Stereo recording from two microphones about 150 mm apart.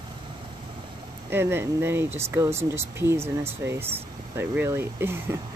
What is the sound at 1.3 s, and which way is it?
Speech, 15° right (ahead or behind).